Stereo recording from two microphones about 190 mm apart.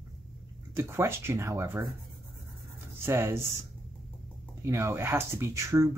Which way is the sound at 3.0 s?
15° right (ahead or behind).